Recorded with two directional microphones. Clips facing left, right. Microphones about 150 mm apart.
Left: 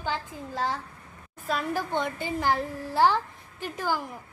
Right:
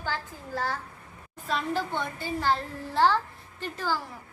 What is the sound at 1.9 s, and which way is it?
A woman's voice, 20° left (ahead or behind).